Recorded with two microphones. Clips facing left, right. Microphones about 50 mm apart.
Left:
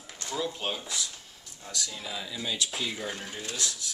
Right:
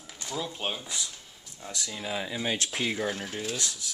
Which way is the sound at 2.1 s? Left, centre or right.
Right.